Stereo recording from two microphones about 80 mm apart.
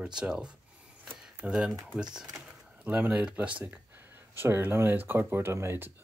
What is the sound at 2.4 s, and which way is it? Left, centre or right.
Speech, centre.